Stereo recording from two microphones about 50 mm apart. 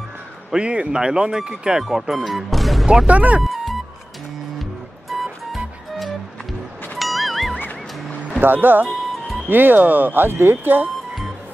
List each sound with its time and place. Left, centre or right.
0.5 s speech: right; by 2.9 s centre
3.1 s speech: right
3.4 s music: centre
5.1 s music: centre
7.0 s music: centre
8.4 s speech: right
8.8 s music: centre
9.5 s speech: right